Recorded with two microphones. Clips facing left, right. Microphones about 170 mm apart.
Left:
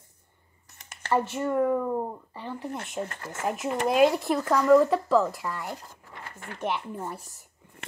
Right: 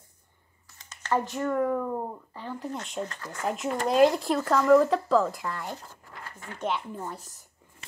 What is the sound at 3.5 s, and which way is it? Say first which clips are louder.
Speech: left 1 dB; 5° left (ahead or behind).